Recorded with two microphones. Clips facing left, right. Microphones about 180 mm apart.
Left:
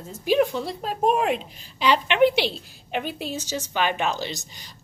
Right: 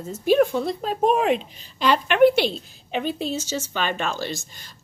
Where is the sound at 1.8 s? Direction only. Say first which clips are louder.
Right 2 dB; 45° right (ahead or behind).